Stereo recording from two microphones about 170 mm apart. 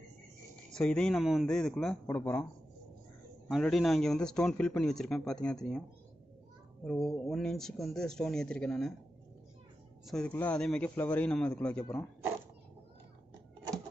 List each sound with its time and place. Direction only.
0.7 s a man's voice: 5° left (ahead or behind)
2.0 s a man's voice: 10° left (ahead or behind)
3.4 s a man's voice: centre (ahead or behind)
10.0 s a man's voice: 5° left (ahead or behind)